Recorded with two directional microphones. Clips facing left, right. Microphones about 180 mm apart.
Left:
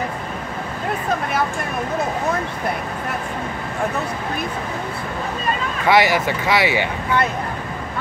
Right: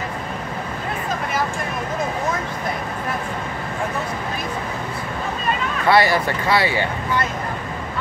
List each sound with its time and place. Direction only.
5.9 s speech: 15° left (ahead or behind)